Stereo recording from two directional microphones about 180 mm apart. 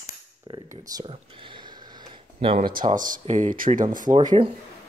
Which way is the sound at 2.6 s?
50° right (ahead or behind).